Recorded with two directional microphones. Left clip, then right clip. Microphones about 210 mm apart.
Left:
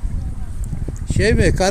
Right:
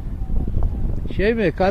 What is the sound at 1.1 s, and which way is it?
Speech, 20° left (ahead or behind).